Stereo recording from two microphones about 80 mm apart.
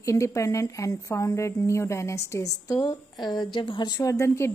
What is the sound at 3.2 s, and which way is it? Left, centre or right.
Speech, left.